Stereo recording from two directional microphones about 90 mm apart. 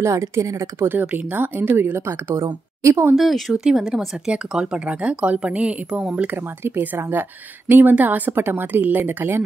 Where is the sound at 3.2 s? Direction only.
Centre (ahead or behind).